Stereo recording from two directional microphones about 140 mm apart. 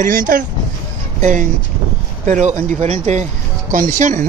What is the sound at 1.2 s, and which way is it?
Speech, 65° right (ahead or behind).